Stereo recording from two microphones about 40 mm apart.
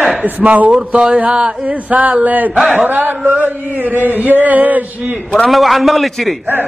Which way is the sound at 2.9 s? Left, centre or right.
Right.